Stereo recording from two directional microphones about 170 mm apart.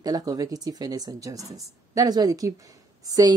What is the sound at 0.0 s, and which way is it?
A woman's voice, 20° right (ahead or behind).